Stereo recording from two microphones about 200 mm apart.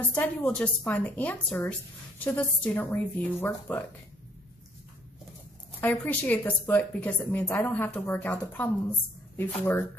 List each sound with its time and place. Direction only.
0.1 s a woman's voice: 10° left (ahead or behind)
5.8 s a woman's voice: 10° left (ahead or behind)